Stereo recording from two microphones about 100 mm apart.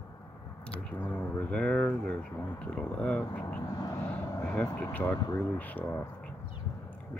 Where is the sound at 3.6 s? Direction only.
40° left (ahead or behind).